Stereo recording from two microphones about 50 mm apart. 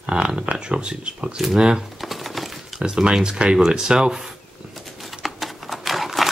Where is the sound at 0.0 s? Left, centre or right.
Centre.